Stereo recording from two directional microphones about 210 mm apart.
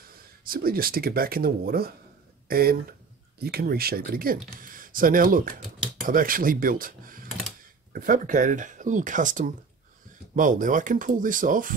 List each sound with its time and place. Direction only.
0.5 s speech: 45° right (ahead or behind)